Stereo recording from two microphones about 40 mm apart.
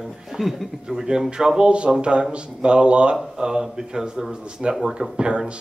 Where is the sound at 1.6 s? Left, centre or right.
Right.